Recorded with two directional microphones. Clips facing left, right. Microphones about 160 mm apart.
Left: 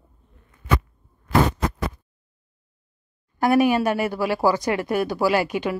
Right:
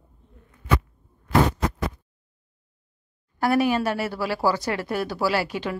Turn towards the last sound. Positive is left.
turn(degrees=15)  # may be behind; listen again after turning